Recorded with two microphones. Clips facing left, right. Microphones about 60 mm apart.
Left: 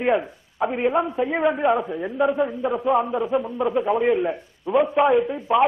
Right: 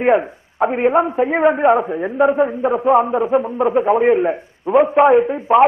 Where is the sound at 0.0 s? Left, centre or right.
Right.